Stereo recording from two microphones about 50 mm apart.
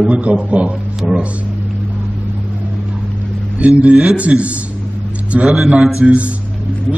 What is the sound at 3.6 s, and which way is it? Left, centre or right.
Speech, right.